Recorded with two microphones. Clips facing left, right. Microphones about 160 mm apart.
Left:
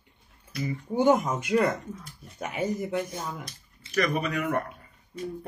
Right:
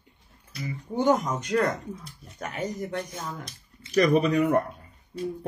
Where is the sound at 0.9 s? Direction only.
10° left (ahead or behind).